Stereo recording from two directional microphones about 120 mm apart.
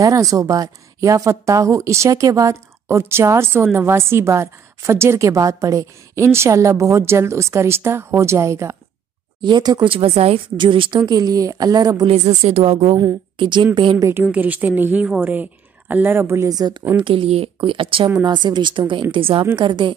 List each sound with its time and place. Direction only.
0.0 s speech: 25° right (ahead or behind)
9.4 s a woman's voice: 35° right (ahead or behind)
9.9 s a woman's voice: 55° right (ahead or behind)
11.1 s a woman's voice: 30° right (ahead or behind)
12.2 s a woman's voice: 70° right (ahead or behind)
12.9 s a woman's voice: 35° right (ahead or behind)
13.9 s speech: 25° right (ahead or behind)
14.2 s a woman's voice: 15° right (ahead or behind); by 16.8 s 35° right (ahead or behind)
16.9 s a woman's voice: 45° right (ahead or behind)
19.5 s a woman's voice: 40° right (ahead or behind)